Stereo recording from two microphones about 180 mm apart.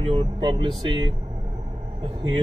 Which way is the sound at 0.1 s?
25° right (ahead or behind).